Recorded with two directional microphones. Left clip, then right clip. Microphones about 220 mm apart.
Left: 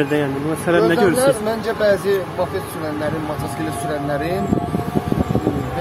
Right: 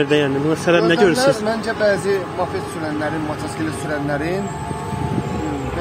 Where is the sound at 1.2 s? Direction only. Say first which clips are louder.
Even; centre (ahead or behind).